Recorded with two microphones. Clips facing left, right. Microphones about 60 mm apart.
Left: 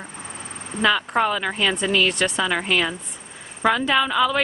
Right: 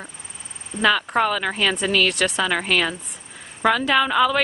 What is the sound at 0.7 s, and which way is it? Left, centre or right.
Speech, centre.